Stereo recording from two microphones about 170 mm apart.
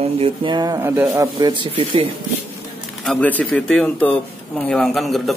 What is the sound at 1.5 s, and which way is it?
Speech, 30° right (ahead or behind).